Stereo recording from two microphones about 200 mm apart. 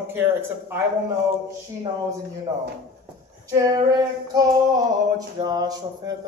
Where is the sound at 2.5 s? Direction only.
20° right (ahead or behind).